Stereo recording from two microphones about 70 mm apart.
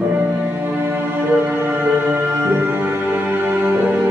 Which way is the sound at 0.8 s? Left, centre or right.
Right.